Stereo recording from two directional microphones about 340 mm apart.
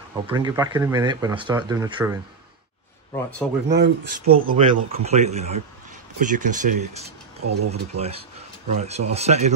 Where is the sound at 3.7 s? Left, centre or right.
Right.